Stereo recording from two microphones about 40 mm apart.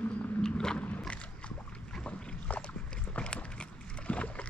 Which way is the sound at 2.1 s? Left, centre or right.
Left.